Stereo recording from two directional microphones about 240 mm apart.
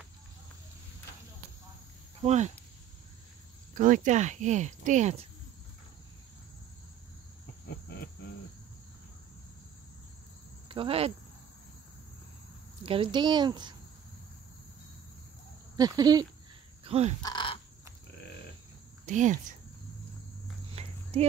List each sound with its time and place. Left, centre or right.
2.2 s speech: right
3.7 s speech: right
10.7 s speech: right
12.8 s speech: right
15.7 s speech: centre
17.2 s crow: centre
19.0 s speech: right
20.7 s clip-clop: right